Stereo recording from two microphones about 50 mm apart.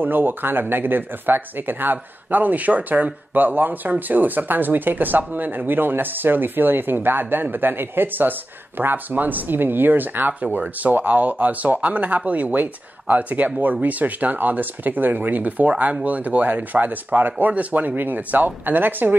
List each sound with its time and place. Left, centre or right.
0.0 s speech: right